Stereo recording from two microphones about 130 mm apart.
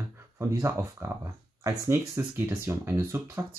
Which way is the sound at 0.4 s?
25° right (ahead or behind).